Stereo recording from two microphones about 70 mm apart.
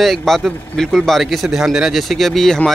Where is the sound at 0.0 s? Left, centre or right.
Centre.